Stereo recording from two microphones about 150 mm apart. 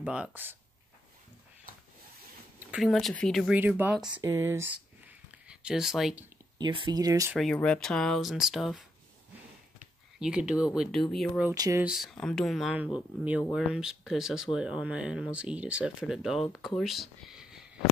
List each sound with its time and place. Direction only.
0.0 s speech: 10° right (ahead or behind)
2.7 s speech: centre (ahead or behind)
3.5 s speech: 10° right (ahead or behind)
4.0 s speech: 30° right (ahead or behind)
4.3 s a sound: 15° right (ahead or behind); by 6.2 s centre (ahead or behind)
6.6 s speech: 30° right (ahead or behind)
7.3 s speech: 5° left (ahead or behind)
10.1 s speech: 5° right (ahead or behind)
11.5 s speech: 25° right (ahead or behind)
11.8 s speech: centre (ahead or behind)